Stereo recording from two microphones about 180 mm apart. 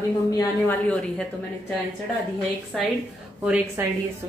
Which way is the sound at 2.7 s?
Centre (ahead or behind).